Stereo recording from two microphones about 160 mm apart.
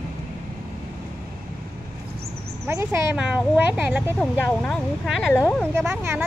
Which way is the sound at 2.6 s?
15° right (ahead or behind).